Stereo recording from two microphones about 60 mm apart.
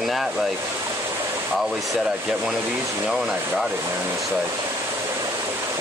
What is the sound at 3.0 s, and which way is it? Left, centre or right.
Speech, centre.